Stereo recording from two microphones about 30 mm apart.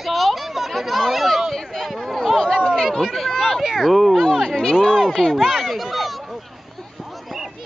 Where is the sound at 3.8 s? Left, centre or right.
Centre.